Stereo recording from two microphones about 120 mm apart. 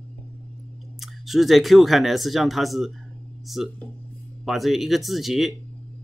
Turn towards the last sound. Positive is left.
turn(degrees=0)  # may be behind; listen again after turning